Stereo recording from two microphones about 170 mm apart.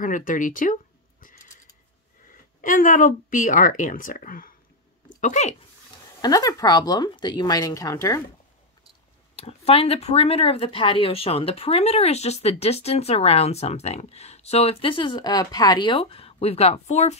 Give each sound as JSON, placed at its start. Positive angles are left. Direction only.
{"t": 0.0, "sound": "speech", "side_deg": 50}
{"t": 2.6, "sound": "speech", "side_deg": 50}
{"t": 5.2, "sound": "speech", "side_deg": 40}
{"t": 6.2, "sound": "speech", "side_deg": 25}
{"t": 9.3, "sound": "speech", "side_deg": 35}